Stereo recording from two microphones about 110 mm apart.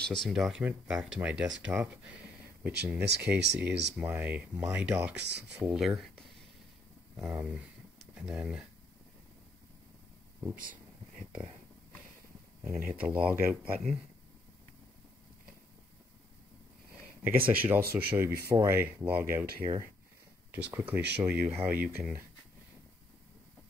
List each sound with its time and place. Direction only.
0.0 s speech: 5° left (ahead or behind)
0.3 s speech: 5° right (ahead or behind)
12.6 s speech: 15° right (ahead or behind)
17.2 s speech: 15° right (ahead or behind)
20.5 s speech: 15° right (ahead or behind)